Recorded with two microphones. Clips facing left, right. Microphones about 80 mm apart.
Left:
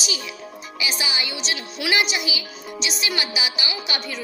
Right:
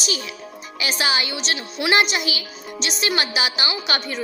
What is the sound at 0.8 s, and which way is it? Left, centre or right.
Music, right.